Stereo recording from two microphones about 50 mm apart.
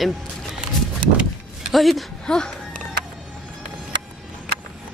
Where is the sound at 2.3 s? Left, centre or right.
Centre.